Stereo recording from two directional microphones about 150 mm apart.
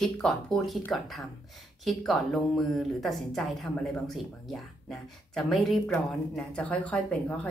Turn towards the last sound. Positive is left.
turn(degrees=10)  # may be behind; listen again after turning